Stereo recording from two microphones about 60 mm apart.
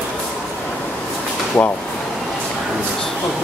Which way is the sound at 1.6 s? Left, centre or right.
Left.